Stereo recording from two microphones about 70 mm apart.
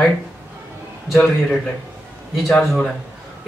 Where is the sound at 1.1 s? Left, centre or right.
Centre.